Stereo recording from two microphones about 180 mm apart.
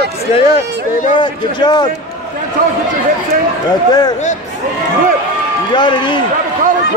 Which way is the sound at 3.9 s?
20° left (ahead or behind).